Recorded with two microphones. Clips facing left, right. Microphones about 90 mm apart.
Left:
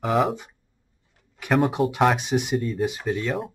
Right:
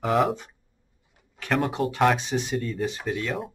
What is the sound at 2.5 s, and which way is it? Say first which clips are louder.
Speech: left 3 dB; centre (ahead or behind).